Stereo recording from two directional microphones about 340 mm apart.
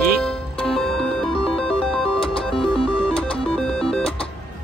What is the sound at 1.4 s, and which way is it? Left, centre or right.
Music, centre.